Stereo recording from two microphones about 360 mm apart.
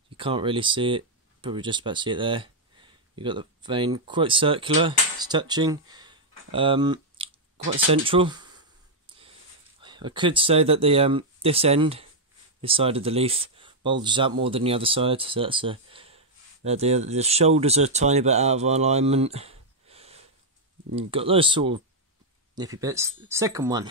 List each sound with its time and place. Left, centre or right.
0.2 s speech: centre
7.7 s a sound: centre
9.8 s speech: centre